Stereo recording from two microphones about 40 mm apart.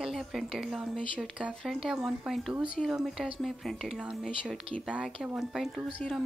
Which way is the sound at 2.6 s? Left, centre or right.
Right.